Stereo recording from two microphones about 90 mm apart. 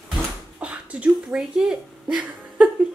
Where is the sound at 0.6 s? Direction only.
15° right (ahead or behind).